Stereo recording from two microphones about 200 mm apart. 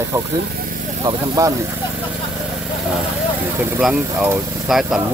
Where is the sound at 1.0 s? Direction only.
20° right (ahead or behind).